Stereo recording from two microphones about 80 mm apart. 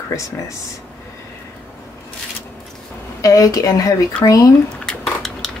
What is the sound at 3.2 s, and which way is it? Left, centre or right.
A woman's voice, left.